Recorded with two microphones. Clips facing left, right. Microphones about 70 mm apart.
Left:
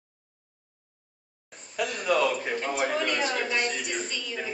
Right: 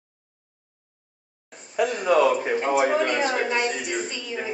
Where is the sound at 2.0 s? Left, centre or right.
Right.